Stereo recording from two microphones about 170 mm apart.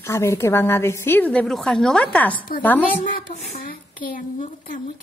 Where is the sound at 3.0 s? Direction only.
40° left (ahead or behind).